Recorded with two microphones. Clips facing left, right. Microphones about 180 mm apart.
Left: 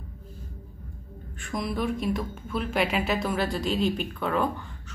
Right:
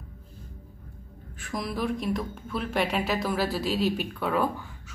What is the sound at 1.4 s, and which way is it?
A woman's voice, centre (ahead or behind).